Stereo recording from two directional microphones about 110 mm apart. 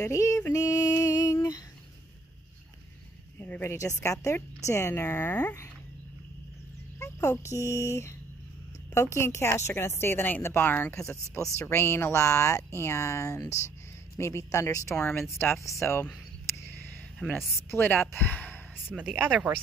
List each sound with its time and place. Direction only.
0.0 s female singing: 30° left (ahead or behind)
3.3 s speech: 15° left (ahead or behind)
4.0 s speech: 30° left (ahead or behind)
7.0 s speech: 30° left (ahead or behind)
11.0 s speech: 25° left (ahead or behind)
17.2 s a woman's voice: 10° left (ahead or behind)
18.9 s speech: 5° left (ahead or behind)
19.3 s speech: 15° right (ahead or behind)